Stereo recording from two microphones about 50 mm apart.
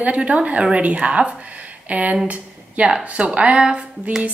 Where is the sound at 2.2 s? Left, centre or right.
Right.